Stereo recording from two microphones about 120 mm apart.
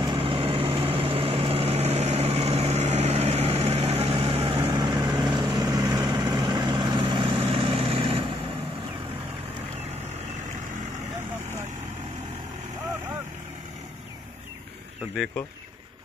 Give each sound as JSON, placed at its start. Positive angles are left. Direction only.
{"t": 0.0, "sound": "vehicle", "side_deg": -45}
{"t": 4.7, "sound": "vehicle", "side_deg": -35}